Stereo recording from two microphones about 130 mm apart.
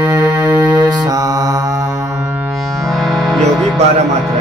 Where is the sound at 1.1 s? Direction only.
30° right (ahead or behind).